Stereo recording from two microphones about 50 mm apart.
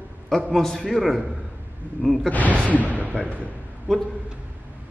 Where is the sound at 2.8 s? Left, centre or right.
Right.